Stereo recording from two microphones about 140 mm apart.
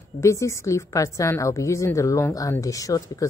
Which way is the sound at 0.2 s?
20° left (ahead or behind).